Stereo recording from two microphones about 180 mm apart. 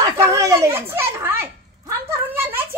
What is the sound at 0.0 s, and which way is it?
Dog, 15° right (ahead or behind).